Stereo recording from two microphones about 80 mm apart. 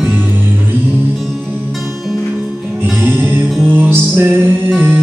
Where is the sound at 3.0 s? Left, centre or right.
Right.